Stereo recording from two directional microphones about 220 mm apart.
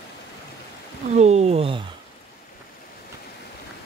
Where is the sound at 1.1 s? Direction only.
30° right (ahead or behind).